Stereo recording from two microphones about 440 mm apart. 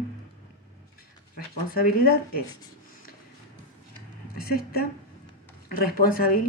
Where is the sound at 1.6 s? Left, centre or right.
Centre.